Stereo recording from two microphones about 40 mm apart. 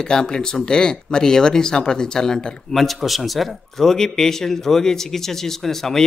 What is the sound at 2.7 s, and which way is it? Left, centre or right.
A man's voice, centre.